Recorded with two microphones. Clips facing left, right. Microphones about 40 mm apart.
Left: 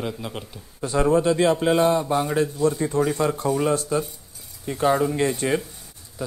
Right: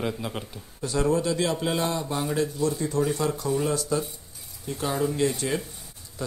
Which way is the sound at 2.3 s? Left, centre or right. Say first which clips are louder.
Left 4 dB; left.